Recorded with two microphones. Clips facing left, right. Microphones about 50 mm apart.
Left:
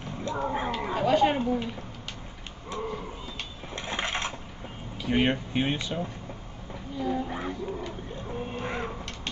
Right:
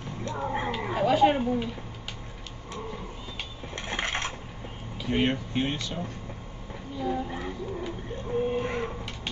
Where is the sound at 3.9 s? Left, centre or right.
Right.